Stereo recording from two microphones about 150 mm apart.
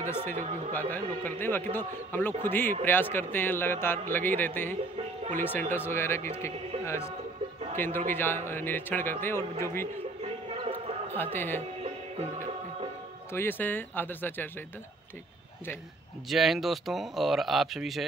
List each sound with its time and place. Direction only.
0.1 s a man's voice: 15° left (ahead or behind)
6.8 s music: 20° left (ahead or behind)
7.7 s a man's voice: 15° left (ahead or behind)
10.2 s music: 40° right (ahead or behind)
11.3 s a man's voice: 15° left (ahead or behind)
13.3 s a man's voice: 15° left (ahead or behind)
16.3 s speech: centre (ahead or behind)